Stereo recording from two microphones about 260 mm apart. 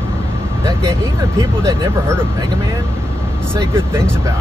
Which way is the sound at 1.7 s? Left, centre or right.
Centre.